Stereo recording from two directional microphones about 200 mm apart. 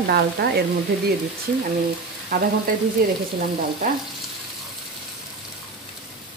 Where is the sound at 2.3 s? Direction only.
50° right (ahead or behind).